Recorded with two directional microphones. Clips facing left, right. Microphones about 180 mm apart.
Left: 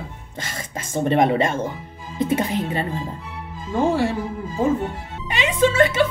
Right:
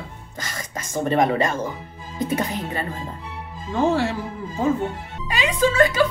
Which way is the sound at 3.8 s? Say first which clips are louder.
Even; 10° left (ahead or behind).